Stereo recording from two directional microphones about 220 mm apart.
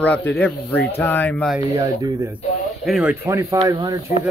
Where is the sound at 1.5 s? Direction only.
15° right (ahead or behind).